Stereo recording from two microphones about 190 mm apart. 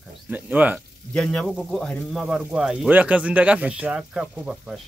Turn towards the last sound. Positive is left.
turn(degrees=0)  # may be behind; listen again after turning